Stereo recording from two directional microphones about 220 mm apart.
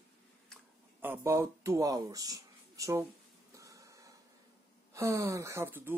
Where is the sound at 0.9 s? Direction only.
10° right (ahead or behind).